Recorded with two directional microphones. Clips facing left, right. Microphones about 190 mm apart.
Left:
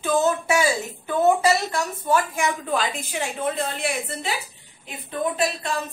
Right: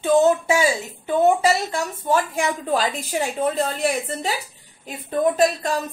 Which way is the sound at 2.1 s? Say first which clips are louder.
Right 1 dB; 30° right (ahead or behind).